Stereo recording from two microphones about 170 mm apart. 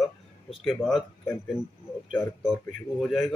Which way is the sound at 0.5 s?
Centre (ahead or behind).